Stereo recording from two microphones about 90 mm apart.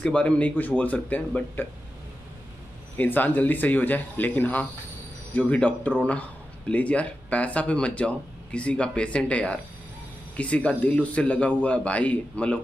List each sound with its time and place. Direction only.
0.0 s speech: 15° left (ahead or behind)
3.0 s speech: 20° left (ahead or behind)